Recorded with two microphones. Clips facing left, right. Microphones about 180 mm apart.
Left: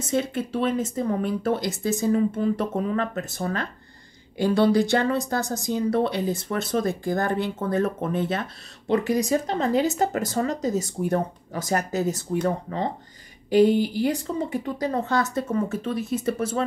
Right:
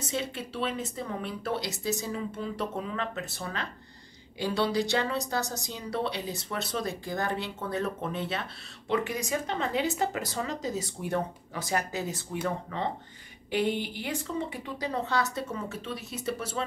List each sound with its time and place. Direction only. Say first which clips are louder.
0.1 s speech: left 10 dB; 50° left (ahead or behind)